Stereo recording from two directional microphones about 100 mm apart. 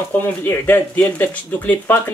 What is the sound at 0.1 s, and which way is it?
Speech, 20° left (ahead or behind).